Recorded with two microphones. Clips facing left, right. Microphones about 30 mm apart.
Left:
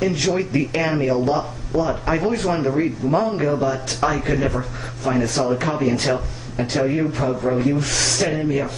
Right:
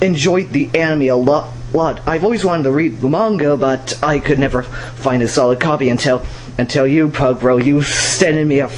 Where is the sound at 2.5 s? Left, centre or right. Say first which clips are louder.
Right 6 dB; right.